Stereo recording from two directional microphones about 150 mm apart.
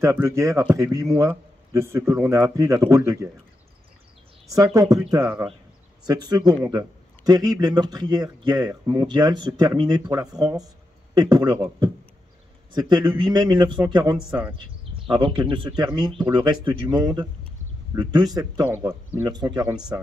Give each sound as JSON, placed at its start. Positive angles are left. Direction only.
{"t": 0.0, "sound": "a man's voice", "side_deg": -20}
{"t": 5.1, "sound": "speech", "side_deg": -15}
{"t": 6.0, "sound": "a man's voice", "side_deg": -25}
{"t": 14.1, "sound": "speech", "side_deg": -5}
{"t": 14.6, "sound": "a man's voice", "side_deg": -35}